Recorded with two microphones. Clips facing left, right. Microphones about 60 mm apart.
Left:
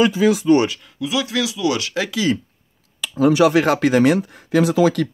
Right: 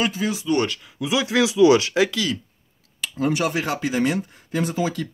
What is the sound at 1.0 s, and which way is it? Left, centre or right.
Speech, right.